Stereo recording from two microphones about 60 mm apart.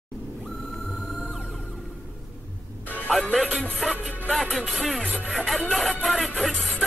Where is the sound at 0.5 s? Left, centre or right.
Centre.